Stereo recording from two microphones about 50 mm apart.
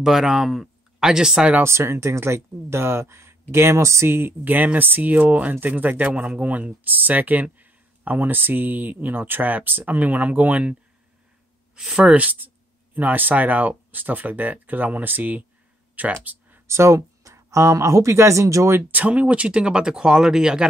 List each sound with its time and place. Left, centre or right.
0.0 s speech: centre
1.6 s speech: right
4.7 s speech: right
11.7 s speech: centre
12.0 s speech: right
16.3 s a sound: right
16.6 s speech: right
18.8 s speech: right; by 20.6 s centre